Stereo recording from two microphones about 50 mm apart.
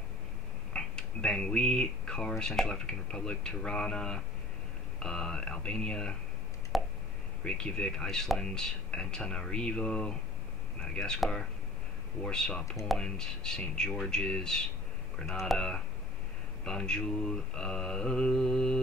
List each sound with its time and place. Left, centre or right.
0.7 s speech: centre
2.6 s mantra: centre
6.7 s a sound: centre
7.4 s mantra: left
12.2 s mantra: centre
15.2 s speech: centre
15.5 s mantra: centre